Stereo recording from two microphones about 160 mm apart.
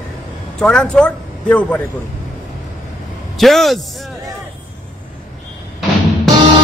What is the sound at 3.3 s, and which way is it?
Speech, centre (ahead or behind).